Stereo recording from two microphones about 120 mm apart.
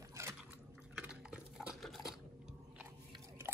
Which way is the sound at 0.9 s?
5° right (ahead or behind).